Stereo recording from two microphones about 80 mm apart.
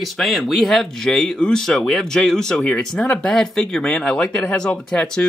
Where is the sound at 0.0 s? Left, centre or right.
Centre.